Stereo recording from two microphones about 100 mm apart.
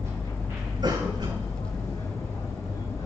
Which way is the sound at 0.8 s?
45° right (ahead or behind).